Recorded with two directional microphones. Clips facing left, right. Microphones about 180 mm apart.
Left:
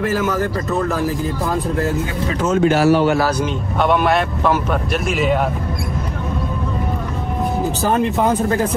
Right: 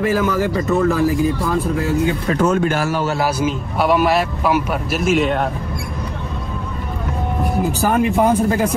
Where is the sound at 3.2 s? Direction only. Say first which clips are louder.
Even; 5° right (ahead or behind).